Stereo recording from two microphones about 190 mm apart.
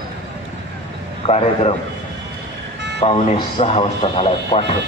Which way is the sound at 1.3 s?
35° left (ahead or behind).